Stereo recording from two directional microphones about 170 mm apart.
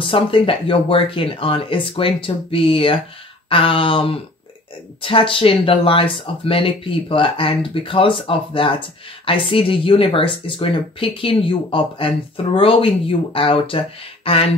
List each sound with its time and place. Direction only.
0.0 s speech: 30° left (ahead or behind)